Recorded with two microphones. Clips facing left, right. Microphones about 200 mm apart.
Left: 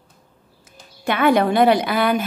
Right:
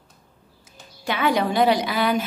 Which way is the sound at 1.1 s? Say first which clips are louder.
Left 5 dB; 55° left (ahead or behind).